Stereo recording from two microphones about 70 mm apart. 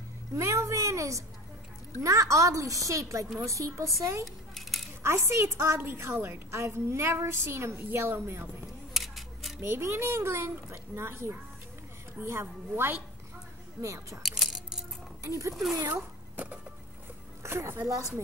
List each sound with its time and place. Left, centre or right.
0.3 s a sound: right
2.0 s a child's voice: right
4.6 s dishes: centre
5.0 s a woman's voice: right
8.9 s scissors: centre
9.6 s a woman's voice: right
13.7 s a child's voice: right
14.2 s a sound: centre
15.2 s a child's voice: right
15.5 s speech: centre
17.4 s speech: right
17.8 s a child's voice: right